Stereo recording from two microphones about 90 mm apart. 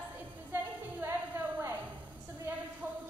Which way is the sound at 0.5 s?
25° right (ahead or behind).